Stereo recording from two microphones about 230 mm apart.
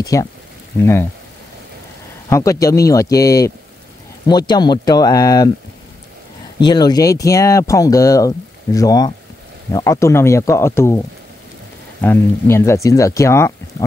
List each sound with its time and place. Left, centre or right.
0.0 s speech: centre
2.2 s speech: centre
6.6 s speech: centre
12.0 s speech: centre